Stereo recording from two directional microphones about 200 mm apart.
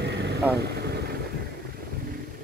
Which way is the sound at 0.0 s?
55° right (ahead or behind).